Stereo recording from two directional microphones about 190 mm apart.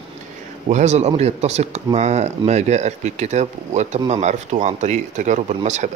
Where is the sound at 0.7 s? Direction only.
35° right (ahead or behind).